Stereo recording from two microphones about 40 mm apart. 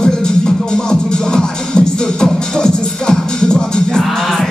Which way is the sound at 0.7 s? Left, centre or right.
Centre.